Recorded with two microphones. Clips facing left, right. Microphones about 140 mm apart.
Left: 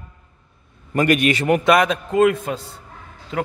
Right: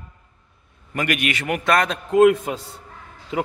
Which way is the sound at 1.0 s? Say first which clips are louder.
Left 7 dB; 35° left (ahead or behind).